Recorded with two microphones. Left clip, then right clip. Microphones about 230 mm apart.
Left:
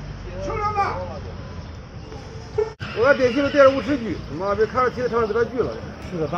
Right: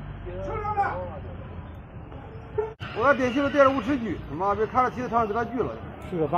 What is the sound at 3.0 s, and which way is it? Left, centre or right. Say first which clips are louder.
A man's voice: left 5 dB; right.